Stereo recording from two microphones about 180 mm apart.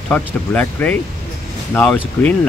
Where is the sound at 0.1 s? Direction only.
10° left (ahead or behind).